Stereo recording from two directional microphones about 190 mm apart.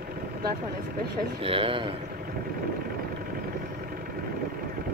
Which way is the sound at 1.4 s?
30° right (ahead or behind).